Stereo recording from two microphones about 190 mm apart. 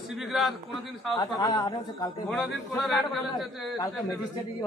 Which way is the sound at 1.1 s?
20° left (ahead or behind).